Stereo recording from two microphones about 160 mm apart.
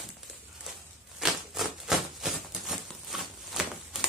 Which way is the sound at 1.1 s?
Centre (ahead or behind).